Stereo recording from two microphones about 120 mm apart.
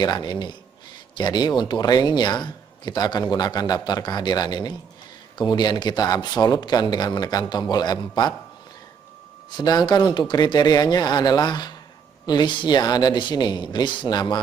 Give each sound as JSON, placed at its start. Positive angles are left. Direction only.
{"t": 0.0, "sound": "speech", "side_deg": 35}
{"t": 9.5, "sound": "speech", "side_deg": 35}